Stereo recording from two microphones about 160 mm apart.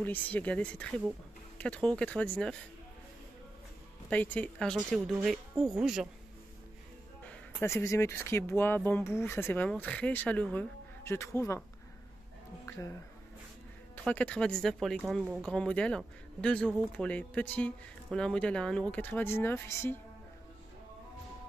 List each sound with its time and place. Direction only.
0.0 s speech: 10° left (ahead or behind)
4.1 s speech: 10° left (ahead or behind)
7.2 s speech: 15° left (ahead or behind)
12.6 s speech: 15° left (ahead or behind)
14.0 s speech: 5° left (ahead or behind)
15.2 s speech: 5° right (ahead or behind)
15.5 s speech: 5° left (ahead or behind)